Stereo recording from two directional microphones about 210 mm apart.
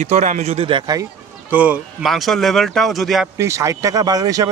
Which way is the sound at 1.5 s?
5° right (ahead or behind).